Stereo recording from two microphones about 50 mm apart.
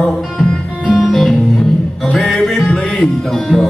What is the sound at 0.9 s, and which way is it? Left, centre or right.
Music, centre.